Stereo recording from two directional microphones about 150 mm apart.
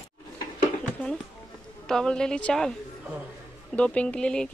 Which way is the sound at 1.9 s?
5° left (ahead or behind).